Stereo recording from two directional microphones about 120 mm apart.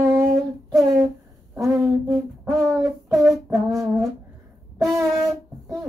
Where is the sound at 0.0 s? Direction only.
20° right (ahead or behind).